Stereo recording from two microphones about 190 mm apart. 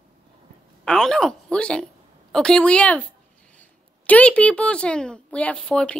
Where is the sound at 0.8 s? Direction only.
5° left (ahead or behind).